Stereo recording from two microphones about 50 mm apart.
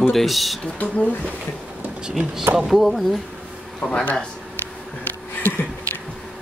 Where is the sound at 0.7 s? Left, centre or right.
Left.